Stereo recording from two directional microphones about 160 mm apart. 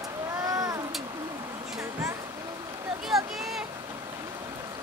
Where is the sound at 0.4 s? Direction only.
20° right (ahead or behind).